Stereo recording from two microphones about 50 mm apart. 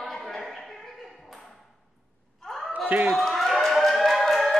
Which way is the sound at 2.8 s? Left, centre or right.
Right.